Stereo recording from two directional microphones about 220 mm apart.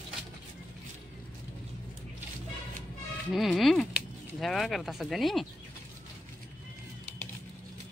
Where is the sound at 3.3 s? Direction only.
Centre (ahead or behind).